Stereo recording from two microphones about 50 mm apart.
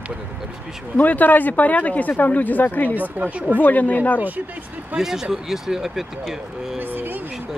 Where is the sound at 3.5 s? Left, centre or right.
Left.